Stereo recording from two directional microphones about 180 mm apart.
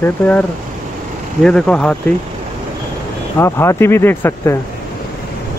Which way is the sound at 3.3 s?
15° left (ahead or behind).